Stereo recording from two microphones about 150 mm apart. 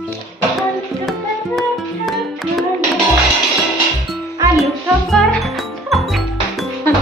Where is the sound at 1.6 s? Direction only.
Centre (ahead or behind).